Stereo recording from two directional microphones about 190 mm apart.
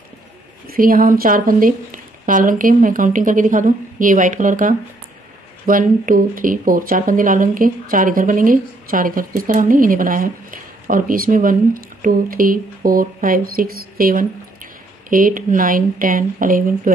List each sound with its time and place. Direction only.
0.7 s speech: 50° right (ahead or behind)